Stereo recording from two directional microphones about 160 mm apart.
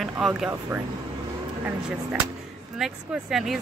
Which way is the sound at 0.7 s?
20° right (ahead or behind).